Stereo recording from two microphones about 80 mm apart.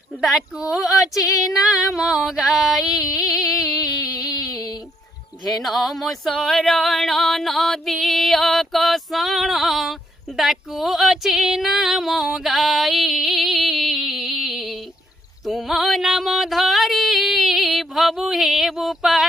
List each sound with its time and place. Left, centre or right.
0.2 s female singing: centre
1.1 s female singing: left
2.0 s female singing: centre
4.0 s a sound: left
5.4 s female singing: centre
15.4 s music: centre